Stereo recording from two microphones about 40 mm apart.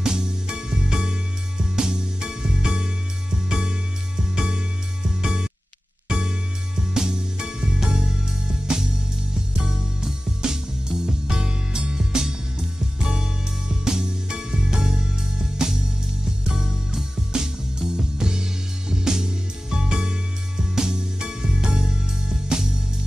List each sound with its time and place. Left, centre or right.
0.0 s music: centre